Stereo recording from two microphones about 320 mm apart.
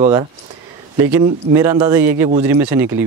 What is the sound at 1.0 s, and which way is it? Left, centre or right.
Speech, centre.